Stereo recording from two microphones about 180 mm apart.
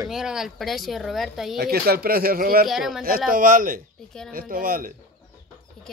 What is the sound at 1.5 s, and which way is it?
Speech, 60° right (ahead or behind).